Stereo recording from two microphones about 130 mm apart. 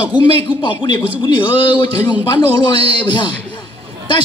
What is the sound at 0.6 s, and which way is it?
Speech, 35° left (ahead or behind).